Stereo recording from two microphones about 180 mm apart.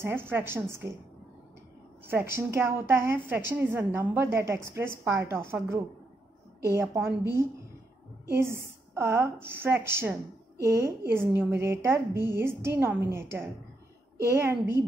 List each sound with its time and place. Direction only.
0.0 s a woman's voice: 15° right (ahead or behind)
2.0 s a woman's voice: 15° right (ahead or behind)
8.3 s a woman's voice: 15° right (ahead or behind)